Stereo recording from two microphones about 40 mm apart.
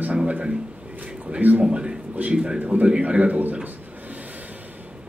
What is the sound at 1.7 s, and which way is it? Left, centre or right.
Speech, right.